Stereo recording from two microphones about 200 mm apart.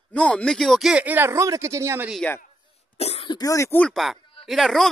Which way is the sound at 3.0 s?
30° left (ahead or behind).